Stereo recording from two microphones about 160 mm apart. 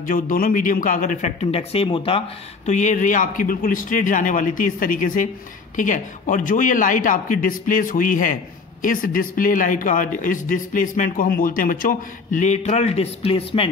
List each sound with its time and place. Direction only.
0.0 s speech: 60° left (ahead or behind); by 13.7 s 35° left (ahead or behind)